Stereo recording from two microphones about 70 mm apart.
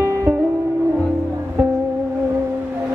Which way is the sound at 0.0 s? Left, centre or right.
Right.